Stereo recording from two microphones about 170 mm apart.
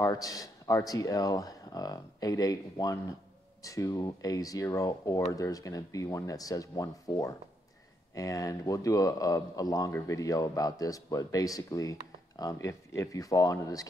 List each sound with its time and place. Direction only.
0.0 s speech: 20° left (ahead or behind)